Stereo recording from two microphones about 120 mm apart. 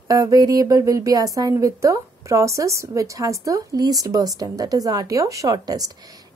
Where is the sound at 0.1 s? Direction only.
30° right (ahead or behind).